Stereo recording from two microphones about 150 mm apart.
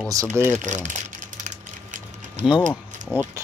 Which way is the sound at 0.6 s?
55° right (ahead or behind).